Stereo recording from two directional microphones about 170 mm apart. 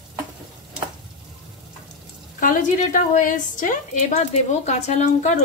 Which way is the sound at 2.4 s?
50° left (ahead or behind).